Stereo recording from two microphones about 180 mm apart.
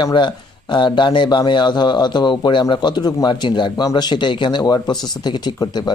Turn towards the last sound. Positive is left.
turn(degrees=20)  # may be behind; listen again after turning